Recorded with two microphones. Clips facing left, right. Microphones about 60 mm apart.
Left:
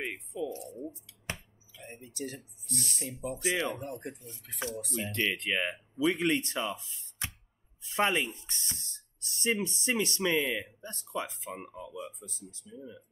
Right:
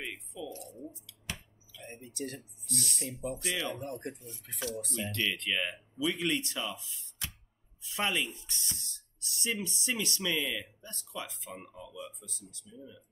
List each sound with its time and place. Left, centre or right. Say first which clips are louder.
0.3 s a sound: left 7 dB; left
0.8 s finger snapping: left 4 dB; left
1.8 s speech: even; centre
2.6 s speech: even; left
2.9 s speech: left 1 dB; centre
5.1 s speech: left 2 dB; left
5.4 s speech: left 2 dB; centre
6.0 s speech: left 4 dB; left